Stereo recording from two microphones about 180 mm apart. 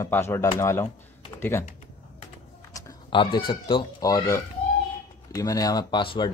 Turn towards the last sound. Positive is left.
turn(degrees=25)  # may be behind; listen again after turning